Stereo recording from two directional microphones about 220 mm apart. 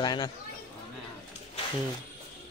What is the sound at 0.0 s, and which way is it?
Speech, 20° left (ahead or behind).